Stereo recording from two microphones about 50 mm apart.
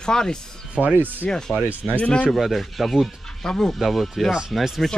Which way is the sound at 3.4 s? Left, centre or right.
Centre.